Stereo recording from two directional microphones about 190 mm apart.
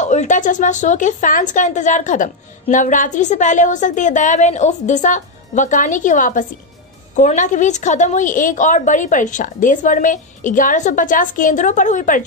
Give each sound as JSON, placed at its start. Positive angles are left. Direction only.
{"t": 0.0, "sound": "a woman's voice", "side_deg": 40}